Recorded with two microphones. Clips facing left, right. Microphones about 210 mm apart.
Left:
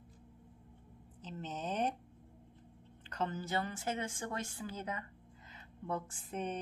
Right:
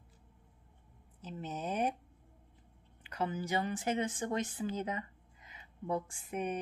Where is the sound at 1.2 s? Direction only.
10° right (ahead or behind).